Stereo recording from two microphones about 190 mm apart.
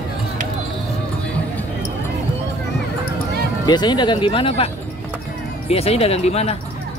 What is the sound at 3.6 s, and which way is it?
Speech, 20° left (ahead or behind).